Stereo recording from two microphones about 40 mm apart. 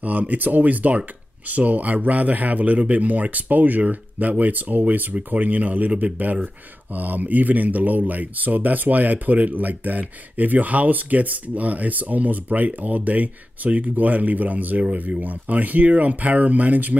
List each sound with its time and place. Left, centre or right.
0.0 s speech: right
6.4 s speech: right